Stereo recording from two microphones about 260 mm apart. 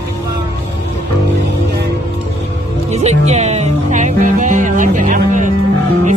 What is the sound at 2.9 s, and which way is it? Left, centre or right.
Music, right.